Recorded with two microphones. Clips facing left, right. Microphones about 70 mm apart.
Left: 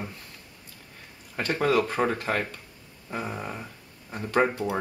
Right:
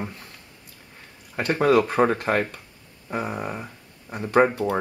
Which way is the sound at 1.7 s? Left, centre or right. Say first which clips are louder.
Right 6 dB; right.